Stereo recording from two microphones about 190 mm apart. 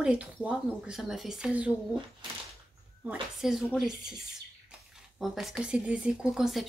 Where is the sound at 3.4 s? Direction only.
Centre (ahead or behind).